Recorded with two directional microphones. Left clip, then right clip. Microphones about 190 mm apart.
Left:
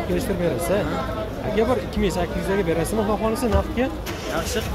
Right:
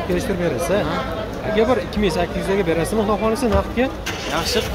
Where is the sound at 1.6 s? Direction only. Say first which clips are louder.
Right 4 dB; 10° right (ahead or behind).